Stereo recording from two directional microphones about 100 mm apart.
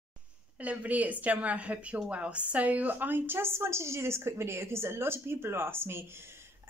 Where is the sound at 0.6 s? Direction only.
15° right (ahead or behind).